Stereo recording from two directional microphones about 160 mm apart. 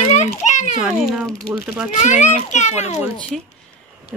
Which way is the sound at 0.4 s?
45° left (ahead or behind).